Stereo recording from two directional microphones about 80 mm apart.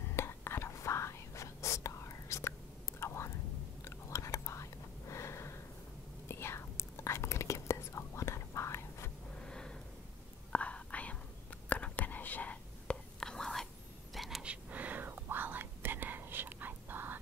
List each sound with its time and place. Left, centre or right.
0.1 s whispering: left
9.4 s a sound: centre
10.5 s whispering: centre
13.2 s whispering: centre
14.1 s a sound: centre
14.4 s whispering: centre